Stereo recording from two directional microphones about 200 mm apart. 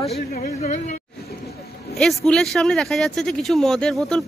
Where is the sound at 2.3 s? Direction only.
5° left (ahead or behind).